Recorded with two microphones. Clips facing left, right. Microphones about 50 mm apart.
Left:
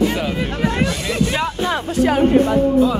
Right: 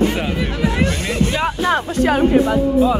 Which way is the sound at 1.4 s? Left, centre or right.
Right.